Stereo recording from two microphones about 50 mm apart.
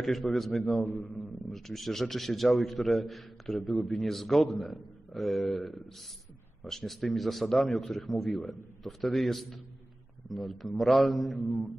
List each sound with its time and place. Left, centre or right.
0.0 s a man's voice: centre
0.8 s a man's voice: left
1.5 s a man's voice: centre